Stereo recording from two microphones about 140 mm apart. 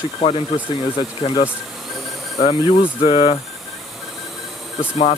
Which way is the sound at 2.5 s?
35° left (ahead or behind).